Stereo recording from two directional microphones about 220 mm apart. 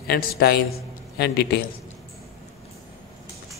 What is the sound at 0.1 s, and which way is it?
A man's voice, 45° left (ahead or behind).